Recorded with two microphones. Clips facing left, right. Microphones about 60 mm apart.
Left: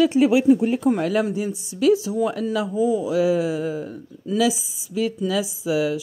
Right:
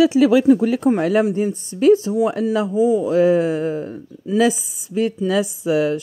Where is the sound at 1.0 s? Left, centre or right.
Right.